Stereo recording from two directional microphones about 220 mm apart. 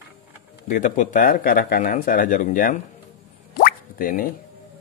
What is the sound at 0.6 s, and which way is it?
Speech, 35° left (ahead or behind).